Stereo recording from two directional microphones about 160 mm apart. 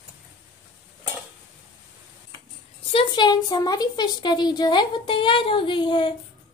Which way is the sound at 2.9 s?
30° left (ahead or behind).